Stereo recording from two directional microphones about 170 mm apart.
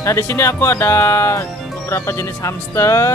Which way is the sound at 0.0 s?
15° left (ahead or behind).